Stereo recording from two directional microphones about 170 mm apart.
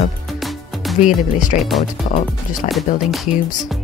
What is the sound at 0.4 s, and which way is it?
Music, centre (ahead or behind).